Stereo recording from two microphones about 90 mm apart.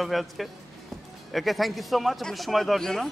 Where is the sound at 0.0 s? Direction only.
Centre (ahead or behind).